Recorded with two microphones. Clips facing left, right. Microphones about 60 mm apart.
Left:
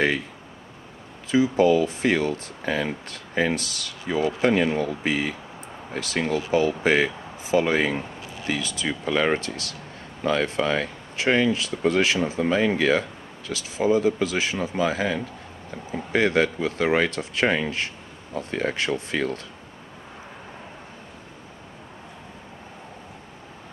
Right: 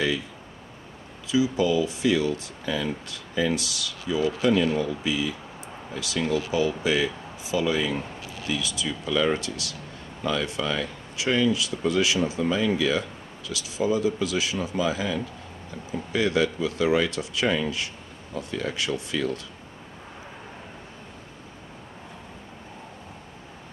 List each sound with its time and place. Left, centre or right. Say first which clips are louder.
1.2 s speech: left 4 dB; left